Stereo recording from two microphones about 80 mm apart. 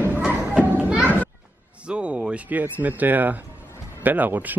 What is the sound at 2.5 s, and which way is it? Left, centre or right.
Speech, right.